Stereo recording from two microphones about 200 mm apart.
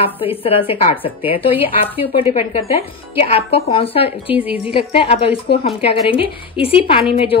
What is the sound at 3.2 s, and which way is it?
Speech, 30° left (ahead or behind).